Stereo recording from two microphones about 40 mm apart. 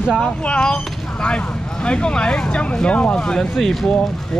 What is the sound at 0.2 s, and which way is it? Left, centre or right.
Speech, left.